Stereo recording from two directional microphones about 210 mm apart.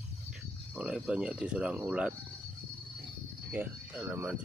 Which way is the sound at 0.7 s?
5° right (ahead or behind).